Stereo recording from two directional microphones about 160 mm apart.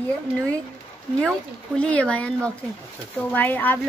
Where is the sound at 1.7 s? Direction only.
10° left (ahead or behind).